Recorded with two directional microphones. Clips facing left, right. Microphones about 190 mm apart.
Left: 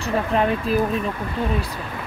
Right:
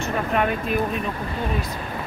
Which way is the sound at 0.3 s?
30° left (ahead or behind).